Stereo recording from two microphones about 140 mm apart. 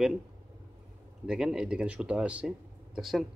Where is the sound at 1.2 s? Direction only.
5° right (ahead or behind).